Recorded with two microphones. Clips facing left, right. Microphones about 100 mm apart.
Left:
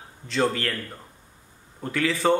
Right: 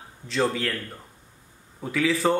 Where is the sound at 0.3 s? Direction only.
Centre (ahead or behind).